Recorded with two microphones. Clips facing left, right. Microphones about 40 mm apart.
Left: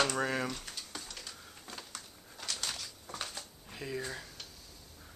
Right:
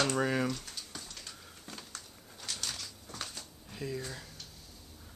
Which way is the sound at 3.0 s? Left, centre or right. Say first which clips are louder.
Left 1 dB; centre.